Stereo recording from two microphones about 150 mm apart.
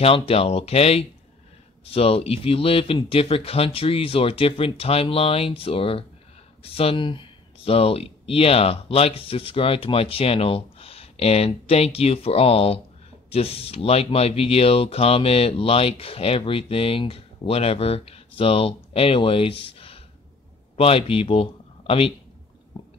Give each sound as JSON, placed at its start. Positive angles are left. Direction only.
{"t": 0.0, "sound": "speech", "side_deg": 40}